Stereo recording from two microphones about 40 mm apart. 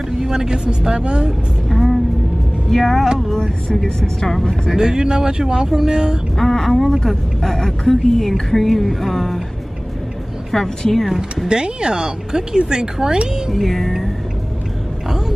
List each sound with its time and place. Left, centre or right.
0.2 s speech: centre
1.7 s vehicle: centre
2.7 s speech: centre
4.7 s speech: centre
6.3 s speech: centre
10.8 s speech: centre
11.4 s speech: right
13.5 s speech: centre
15.0 s a sound: centre